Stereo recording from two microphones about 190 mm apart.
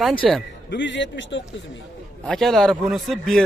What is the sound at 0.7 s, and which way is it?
Speech, 70° left (ahead or behind).